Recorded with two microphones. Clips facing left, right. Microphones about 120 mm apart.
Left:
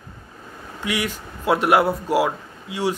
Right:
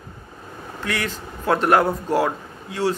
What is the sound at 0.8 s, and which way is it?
Speech, 15° left (ahead or behind).